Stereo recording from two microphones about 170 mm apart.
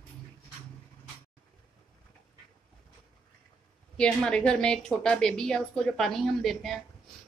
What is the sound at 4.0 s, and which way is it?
A woman's voice, 5° left (ahead or behind).